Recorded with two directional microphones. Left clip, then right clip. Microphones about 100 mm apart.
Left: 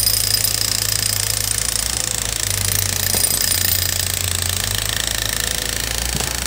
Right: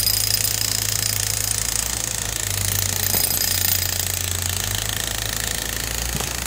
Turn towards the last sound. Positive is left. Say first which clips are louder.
# left 4 dB
turn(degrees=45)  # may be behind; listen again after turning